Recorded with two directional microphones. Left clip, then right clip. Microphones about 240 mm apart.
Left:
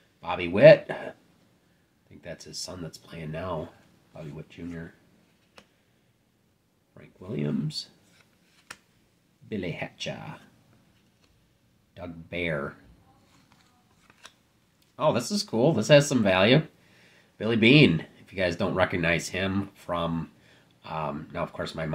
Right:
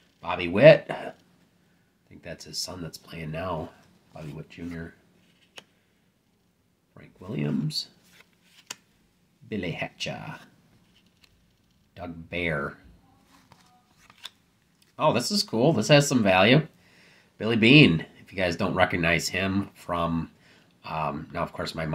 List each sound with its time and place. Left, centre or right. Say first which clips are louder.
0.2 s speech: even; centre
6.9 s speech: even; centre
8.2 s a sound: right 5 dB; right
9.5 s speech: right 2 dB; centre
11.9 s speech: right 2 dB; centre
15.0 s speech: right 2 dB; centre